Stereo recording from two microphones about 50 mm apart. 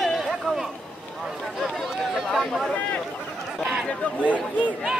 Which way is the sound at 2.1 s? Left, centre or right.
Centre.